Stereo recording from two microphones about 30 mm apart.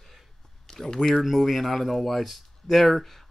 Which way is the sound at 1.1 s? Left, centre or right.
Centre.